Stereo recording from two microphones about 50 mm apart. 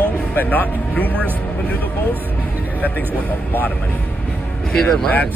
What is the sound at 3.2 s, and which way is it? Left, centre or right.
Speech, left.